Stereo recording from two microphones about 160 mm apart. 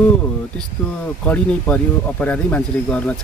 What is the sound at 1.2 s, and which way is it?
Speech, 10° left (ahead or behind).